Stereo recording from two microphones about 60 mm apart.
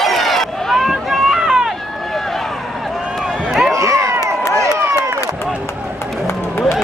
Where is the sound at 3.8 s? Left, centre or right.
Right.